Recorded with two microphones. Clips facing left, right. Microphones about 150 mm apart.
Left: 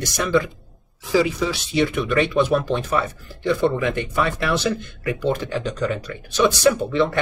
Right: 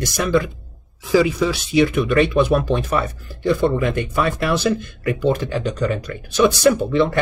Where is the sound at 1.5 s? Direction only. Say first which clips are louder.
Right 4 dB; 10° right (ahead or behind).